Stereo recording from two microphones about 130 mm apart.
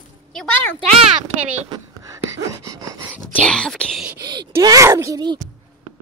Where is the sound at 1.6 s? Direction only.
30° right (ahead or behind).